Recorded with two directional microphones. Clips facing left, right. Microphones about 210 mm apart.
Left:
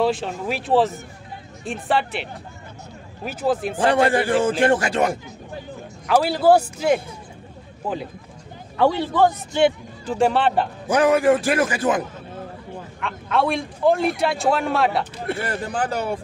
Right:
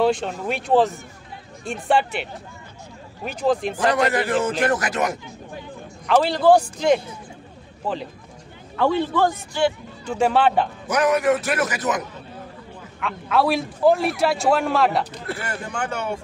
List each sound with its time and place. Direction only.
0.0 s a man's voice: centre (ahead or behind)
3.3 s a man's voice: 5° left (ahead or behind)
3.7 s a man's voice: 30° left (ahead or behind)
6.0 s a man's voice: 5° left (ahead or behind)
9.5 s a man's voice: 20° left (ahead or behind)
10.0 s a man's voice: centre (ahead or behind)
10.9 s a man's voice: 30° left (ahead or behind)
13.0 s a man's voice: centre (ahead or behind)
15.2 s speech: 30° left (ahead or behind)